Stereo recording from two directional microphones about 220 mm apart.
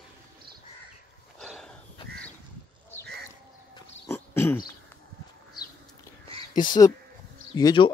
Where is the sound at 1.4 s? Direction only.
Centre (ahead or behind).